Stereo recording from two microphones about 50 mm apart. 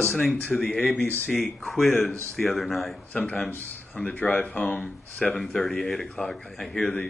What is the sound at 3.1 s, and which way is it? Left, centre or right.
Speech, left.